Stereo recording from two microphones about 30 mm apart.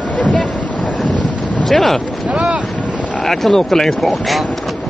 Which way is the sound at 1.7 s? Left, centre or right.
Centre.